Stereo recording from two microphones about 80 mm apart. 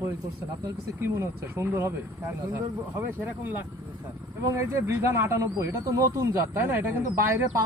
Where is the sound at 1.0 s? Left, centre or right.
Right.